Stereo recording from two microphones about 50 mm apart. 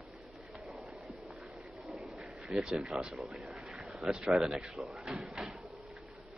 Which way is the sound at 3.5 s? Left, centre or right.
Centre.